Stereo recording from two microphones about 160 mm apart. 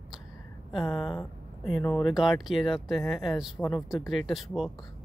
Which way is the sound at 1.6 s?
Centre (ahead or behind).